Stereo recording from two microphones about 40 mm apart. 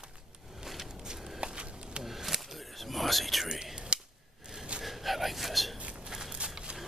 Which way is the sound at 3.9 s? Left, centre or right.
Right.